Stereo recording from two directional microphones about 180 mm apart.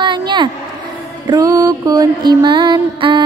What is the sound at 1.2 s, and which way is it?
Speech, 20° right (ahead or behind).